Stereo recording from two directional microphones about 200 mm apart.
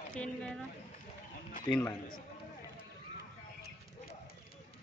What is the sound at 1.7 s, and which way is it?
Speech, 20° left (ahead or behind).